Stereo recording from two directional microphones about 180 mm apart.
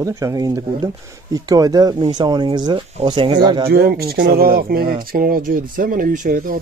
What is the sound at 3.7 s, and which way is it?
Speech, 60° right (ahead or behind).